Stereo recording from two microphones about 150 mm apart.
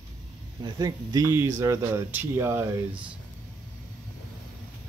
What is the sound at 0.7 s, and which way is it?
Speech, 25° right (ahead or behind).